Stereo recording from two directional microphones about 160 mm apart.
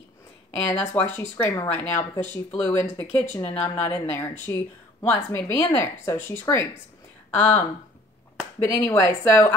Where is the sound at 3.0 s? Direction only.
40° left (ahead or behind).